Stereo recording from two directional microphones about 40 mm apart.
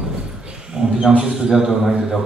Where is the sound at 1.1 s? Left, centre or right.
Right.